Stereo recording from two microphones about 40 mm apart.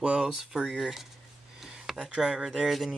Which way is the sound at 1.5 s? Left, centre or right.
Centre.